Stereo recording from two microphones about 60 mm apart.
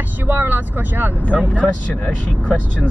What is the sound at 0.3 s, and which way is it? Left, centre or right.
Speech, right.